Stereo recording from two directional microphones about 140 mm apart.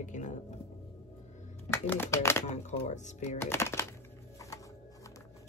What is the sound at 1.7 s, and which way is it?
Speech, 15° left (ahead or behind).